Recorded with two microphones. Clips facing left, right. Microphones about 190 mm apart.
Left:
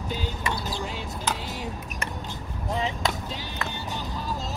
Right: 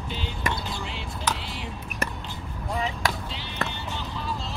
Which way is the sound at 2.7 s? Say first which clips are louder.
Even; 20° left (ahead or behind).